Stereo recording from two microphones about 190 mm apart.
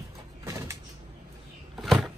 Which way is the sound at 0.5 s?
15° right (ahead or behind).